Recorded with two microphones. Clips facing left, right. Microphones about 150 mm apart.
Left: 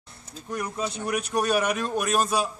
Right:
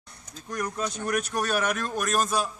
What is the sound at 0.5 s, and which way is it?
Speech, 5° left (ahead or behind).